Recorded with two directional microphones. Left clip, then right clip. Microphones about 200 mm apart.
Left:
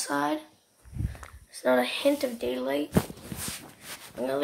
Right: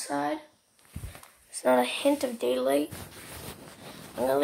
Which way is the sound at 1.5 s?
Centre (ahead or behind).